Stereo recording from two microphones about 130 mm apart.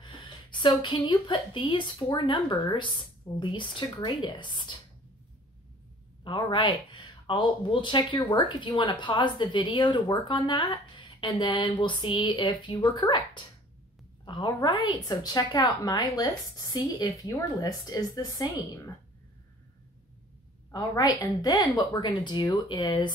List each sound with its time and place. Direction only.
0.0 s speech: 40° left (ahead or behind)
6.2 s speech: 40° left (ahead or behind)
20.7 s speech: 30° left (ahead or behind)